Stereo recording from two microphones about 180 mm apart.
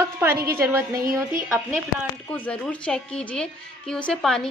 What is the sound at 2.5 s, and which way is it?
A woman's voice, 5° left (ahead or behind).